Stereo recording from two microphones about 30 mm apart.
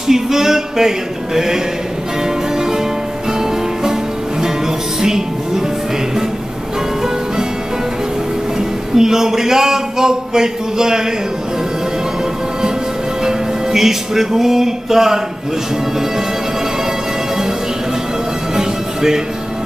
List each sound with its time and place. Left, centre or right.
0.1 s music: centre
8.5 s a man's voice: centre
13.2 s music: centre
18.5 s music: centre